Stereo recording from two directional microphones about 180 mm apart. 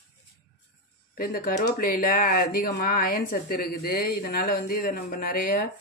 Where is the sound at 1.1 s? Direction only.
55° left (ahead or behind).